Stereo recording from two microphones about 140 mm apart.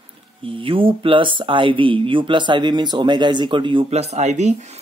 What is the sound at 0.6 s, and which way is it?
Speech, 40° right (ahead or behind).